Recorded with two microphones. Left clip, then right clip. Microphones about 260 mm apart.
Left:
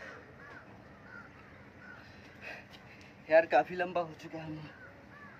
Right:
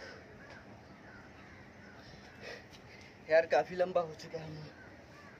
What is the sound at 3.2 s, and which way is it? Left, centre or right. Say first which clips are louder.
A man's voice: left 3 dB; centre.